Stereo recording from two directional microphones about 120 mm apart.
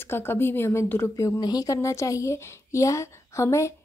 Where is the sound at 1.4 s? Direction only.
30° left (ahead or behind).